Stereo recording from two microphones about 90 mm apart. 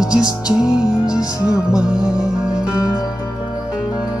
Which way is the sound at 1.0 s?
40° left (ahead or behind).